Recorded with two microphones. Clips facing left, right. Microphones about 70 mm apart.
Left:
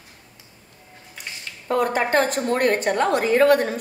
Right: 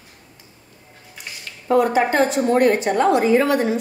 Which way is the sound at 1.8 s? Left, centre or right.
Left.